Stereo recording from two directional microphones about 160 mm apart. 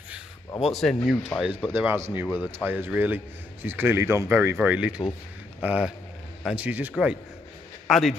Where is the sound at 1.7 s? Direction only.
15° right (ahead or behind).